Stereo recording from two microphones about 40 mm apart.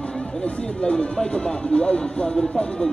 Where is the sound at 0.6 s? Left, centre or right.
Left.